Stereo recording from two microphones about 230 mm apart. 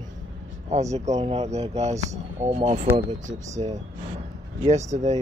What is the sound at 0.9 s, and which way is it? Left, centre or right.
Speech, right.